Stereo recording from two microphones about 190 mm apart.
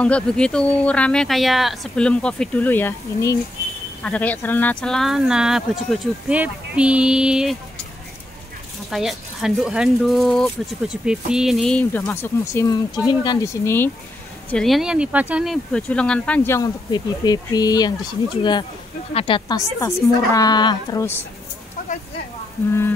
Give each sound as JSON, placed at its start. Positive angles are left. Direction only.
{"t": 0.0, "sound": "speech", "side_deg": 5}
{"t": 8.9, "sound": "speech", "side_deg": 0}
{"t": 14.5, "sound": "speech", "side_deg": 0}